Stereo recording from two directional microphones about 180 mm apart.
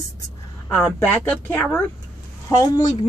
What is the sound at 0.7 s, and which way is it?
Speech, 10° left (ahead or behind).